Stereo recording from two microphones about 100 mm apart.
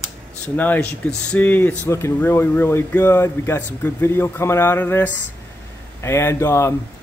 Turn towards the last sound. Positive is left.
turn(degrees=25)  # may be behind; listen again after turning